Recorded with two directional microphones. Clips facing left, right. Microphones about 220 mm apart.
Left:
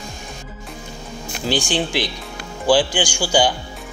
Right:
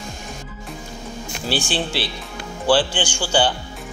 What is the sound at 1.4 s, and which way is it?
Speech, 15° left (ahead or behind).